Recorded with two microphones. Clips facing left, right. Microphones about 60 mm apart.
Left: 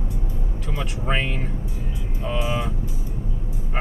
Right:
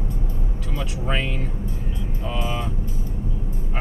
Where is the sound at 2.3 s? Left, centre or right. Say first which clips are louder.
Left 3 dB; centre.